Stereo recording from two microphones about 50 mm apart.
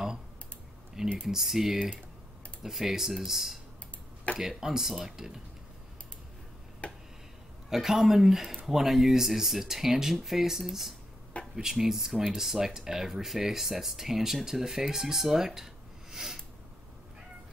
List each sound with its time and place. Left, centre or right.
1.2 s speech: centre
6.8 s a sound: left
7.7 s speech: centre